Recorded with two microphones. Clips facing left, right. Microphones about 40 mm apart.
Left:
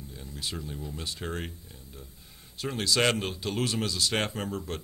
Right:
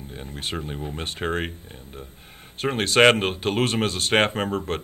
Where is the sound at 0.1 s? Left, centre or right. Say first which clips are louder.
Right 7 dB; right.